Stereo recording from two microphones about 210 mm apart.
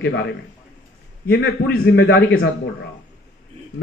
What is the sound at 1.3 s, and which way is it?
A man's voice, 55° left (ahead or behind).